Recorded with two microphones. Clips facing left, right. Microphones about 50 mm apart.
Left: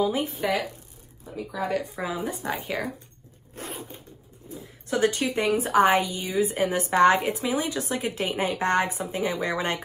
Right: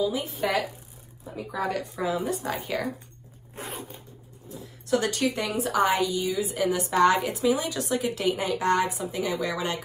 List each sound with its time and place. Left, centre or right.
0.0 s a woman's voice: left
0.4 s speech: centre
1.7 s a woman's voice: centre
4.5 s a woman's voice: left